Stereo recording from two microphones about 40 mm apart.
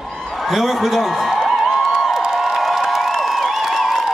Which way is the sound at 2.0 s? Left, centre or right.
Centre.